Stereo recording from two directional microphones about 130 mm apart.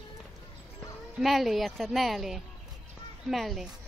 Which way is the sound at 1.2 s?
Centre (ahead or behind).